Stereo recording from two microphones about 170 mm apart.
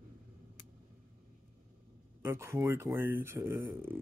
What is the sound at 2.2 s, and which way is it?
Speech, 15° right (ahead or behind).